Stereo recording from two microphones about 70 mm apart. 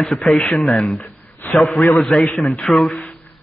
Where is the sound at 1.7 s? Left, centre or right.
Centre.